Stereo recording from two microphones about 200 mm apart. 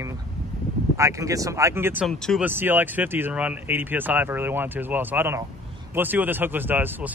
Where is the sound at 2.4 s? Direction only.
10° right (ahead or behind).